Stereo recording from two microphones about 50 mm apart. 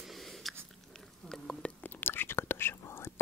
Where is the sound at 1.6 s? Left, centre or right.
Left.